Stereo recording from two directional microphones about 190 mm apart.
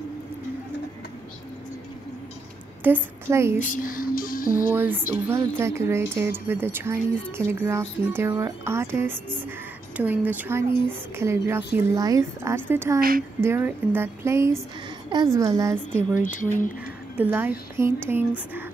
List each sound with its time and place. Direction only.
2.8 s speech: 10° right (ahead or behind)
3.5 s speech: 40° left (ahead or behind)
4.7 s speech: 10° right (ahead or behind)
16.2 s speech: 45° left (ahead or behind)
17.2 s speech: 10° right (ahead or behind)